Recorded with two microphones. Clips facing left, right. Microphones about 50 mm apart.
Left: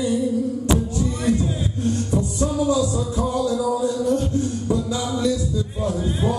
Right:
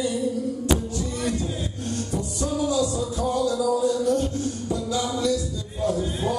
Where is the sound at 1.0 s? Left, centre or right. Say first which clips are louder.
Left 5 dB; left.